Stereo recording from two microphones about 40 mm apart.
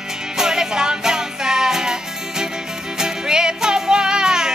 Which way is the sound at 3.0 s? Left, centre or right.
Centre.